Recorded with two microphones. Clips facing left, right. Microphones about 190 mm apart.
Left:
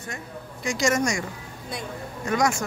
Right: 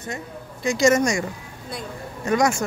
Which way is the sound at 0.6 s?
25° right (ahead or behind).